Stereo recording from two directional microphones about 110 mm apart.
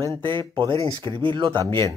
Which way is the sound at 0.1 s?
45° right (ahead or behind).